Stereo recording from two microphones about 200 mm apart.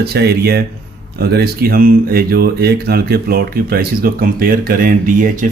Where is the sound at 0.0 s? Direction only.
55° right (ahead or behind).